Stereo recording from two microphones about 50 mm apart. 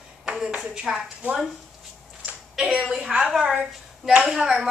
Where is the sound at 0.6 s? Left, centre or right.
Centre.